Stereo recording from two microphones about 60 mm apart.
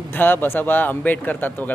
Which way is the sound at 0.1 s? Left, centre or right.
Left.